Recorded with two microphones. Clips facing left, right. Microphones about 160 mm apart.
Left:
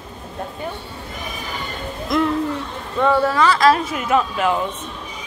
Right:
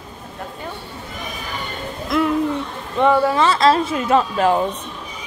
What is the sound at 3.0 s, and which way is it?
Speech, 20° right (ahead or behind).